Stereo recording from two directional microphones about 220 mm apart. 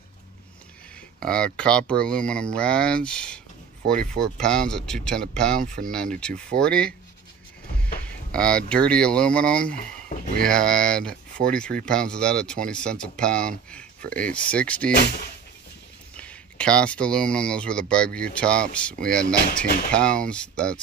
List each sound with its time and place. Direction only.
1.2 s speech: 5° left (ahead or behind)
16.2 s speech: 5° left (ahead or behind)
19.2 s speech: 40° left (ahead or behind)
19.9 s speech: 5° left (ahead or behind)